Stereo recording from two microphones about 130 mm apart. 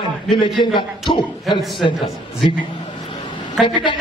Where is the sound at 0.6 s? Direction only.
40° left (ahead or behind).